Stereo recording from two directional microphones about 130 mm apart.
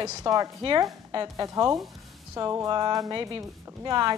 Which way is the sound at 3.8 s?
30° right (ahead or behind).